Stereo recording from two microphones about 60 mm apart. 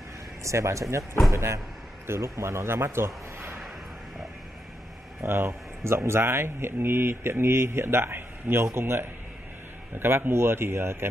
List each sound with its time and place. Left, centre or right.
0.4 s speech: right
5.2 s speech: right